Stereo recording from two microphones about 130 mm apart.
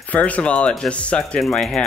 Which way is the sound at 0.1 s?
10° left (ahead or behind).